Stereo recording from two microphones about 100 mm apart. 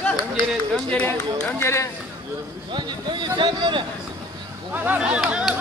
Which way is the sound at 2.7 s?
50° right (ahead or behind).